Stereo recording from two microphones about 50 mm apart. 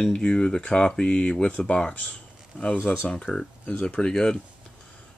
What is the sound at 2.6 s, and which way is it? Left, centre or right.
Speech, left.